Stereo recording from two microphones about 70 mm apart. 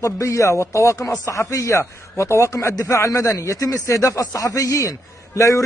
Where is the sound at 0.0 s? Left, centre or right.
Left.